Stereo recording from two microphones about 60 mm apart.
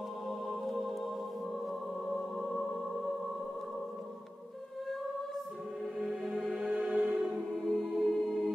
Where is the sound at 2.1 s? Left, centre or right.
Centre.